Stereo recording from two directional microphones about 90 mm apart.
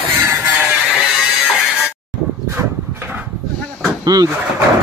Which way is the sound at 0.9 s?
5° right (ahead or behind).